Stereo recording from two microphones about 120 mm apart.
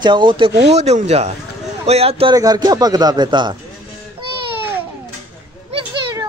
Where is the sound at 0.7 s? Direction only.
65° right (ahead or behind).